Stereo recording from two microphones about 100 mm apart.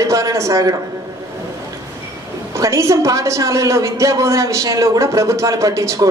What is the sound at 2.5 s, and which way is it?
A woman's voice, 30° right (ahead or behind).